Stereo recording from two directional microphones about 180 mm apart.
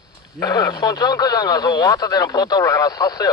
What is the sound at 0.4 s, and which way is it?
Speech, 20° left (ahead or behind).